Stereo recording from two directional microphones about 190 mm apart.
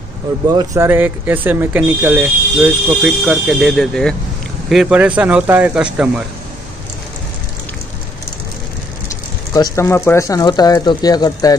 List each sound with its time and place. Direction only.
0.5 s speech: 20° right (ahead or behind)
0.8 s speech: 10° right (ahead or behind)
9.5 s speech: 15° left (ahead or behind)